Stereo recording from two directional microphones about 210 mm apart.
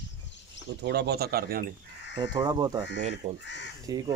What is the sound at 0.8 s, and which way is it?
Speech, 50° right (ahead or behind).